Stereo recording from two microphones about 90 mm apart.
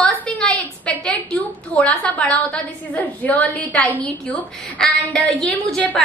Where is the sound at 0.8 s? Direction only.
15° left (ahead or behind).